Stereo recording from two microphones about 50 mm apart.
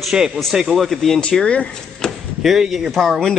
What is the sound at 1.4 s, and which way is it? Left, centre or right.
Speech, left.